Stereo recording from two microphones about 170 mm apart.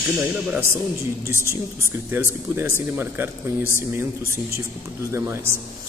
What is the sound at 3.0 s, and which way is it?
A man's voice, 15° right (ahead or behind).